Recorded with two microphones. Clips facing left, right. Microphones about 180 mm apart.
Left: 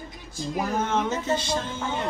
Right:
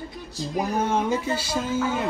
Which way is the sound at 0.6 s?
15° right (ahead or behind).